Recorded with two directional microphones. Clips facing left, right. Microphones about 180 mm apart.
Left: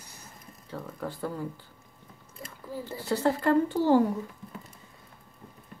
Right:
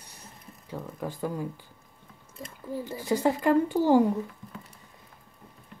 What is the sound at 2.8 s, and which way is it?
Speech, 15° right (ahead or behind).